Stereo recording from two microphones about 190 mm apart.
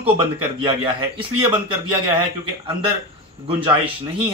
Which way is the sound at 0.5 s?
25° right (ahead or behind).